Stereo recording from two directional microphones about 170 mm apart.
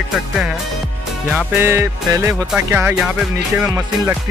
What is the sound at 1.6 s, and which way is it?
Music, 15° right (ahead or behind).